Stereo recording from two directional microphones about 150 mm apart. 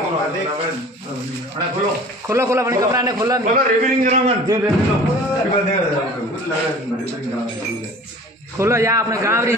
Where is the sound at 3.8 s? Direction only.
55° right (ahead or behind).